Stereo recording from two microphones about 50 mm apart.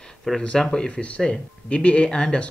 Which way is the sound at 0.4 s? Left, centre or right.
Centre.